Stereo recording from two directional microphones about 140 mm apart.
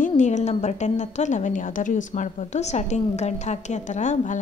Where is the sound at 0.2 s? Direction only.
55° left (ahead or behind).